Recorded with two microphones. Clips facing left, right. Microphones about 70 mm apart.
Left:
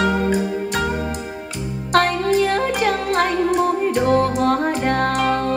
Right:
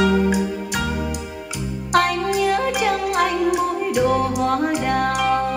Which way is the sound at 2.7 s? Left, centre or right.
Left.